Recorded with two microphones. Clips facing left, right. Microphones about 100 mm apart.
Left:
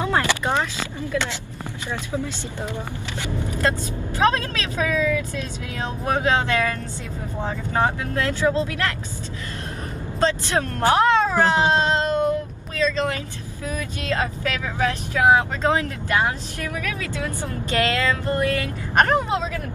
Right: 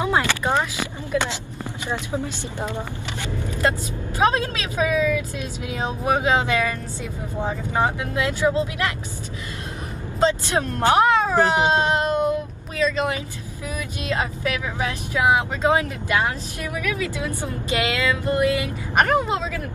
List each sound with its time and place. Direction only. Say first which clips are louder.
0.0 s a sound: even; 15° right (ahead or behind)
1.1 s speech: right 2 dB; 25° right (ahead or behind)
4.2 s speech: even; 15° right (ahead or behind)
10.2 s speech: right 1 dB; 20° right (ahead or behind)